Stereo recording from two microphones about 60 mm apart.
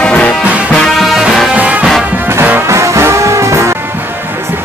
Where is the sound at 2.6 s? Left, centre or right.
Right.